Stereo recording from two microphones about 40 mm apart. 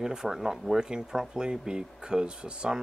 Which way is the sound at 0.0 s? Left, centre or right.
Centre.